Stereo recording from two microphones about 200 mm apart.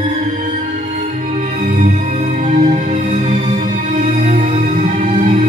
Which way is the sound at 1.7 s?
35° right (ahead or behind).